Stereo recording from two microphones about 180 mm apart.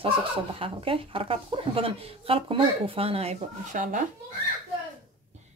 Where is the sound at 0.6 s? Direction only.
30° right (ahead or behind).